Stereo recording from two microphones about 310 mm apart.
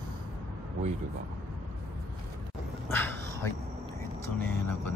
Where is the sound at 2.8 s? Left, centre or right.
Centre.